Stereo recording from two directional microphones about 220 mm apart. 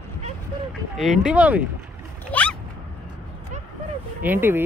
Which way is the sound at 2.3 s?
5° left (ahead or behind).